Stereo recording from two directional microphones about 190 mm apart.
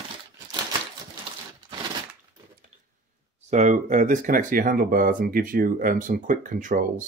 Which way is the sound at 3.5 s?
40° right (ahead or behind).